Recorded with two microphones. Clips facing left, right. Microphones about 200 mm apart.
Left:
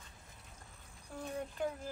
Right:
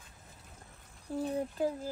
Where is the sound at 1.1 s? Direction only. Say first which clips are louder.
Right 8 dB; 35° right (ahead or behind).